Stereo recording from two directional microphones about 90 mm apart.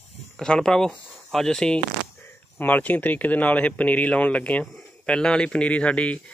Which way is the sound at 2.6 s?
20° left (ahead or behind).